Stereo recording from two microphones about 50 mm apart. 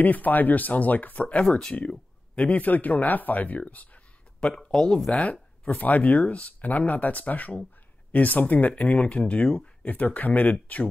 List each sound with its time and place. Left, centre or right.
0.0 s speech: left
1.4 s speech: centre
2.3 s speech: left
4.6 s speech: centre
5.1 s speech: left
9.8 s speech: left